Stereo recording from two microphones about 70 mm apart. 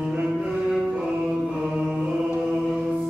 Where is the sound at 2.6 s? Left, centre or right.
Centre.